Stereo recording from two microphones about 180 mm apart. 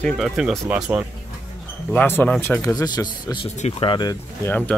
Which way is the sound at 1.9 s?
10° left (ahead or behind).